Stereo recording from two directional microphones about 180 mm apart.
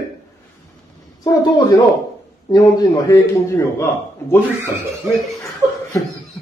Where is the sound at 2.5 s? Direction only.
20° left (ahead or behind).